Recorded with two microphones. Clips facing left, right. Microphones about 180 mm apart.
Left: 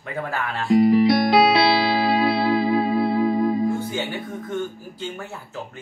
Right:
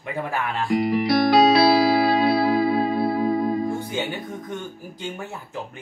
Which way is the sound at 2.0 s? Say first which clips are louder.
Right 1 dB; 25° left (ahead or behind).